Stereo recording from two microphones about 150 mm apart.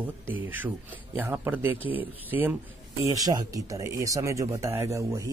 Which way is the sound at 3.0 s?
25° right (ahead or behind).